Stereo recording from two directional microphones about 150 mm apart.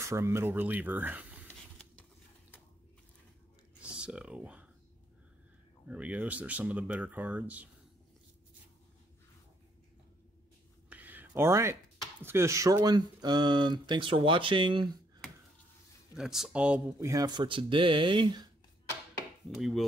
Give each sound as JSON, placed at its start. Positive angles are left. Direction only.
{"t": 0.0, "sound": "speech", "side_deg": -20}
{"t": 4.0, "sound": "speech", "side_deg": -5}
{"t": 5.9, "sound": "speech", "side_deg": -10}
{"t": 10.9, "sound": "a sound", "side_deg": -10}
{"t": 12.2, "sound": "speech", "side_deg": -15}
{"t": 16.2, "sound": "speech", "side_deg": -5}
{"t": 17.0, "sound": "speech", "side_deg": -25}
{"t": 19.6, "sound": "speech", "side_deg": 0}